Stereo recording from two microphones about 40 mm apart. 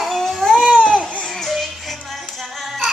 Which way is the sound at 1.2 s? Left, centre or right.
Centre.